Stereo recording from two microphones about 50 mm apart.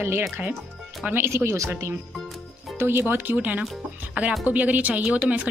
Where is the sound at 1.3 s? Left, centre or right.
Right.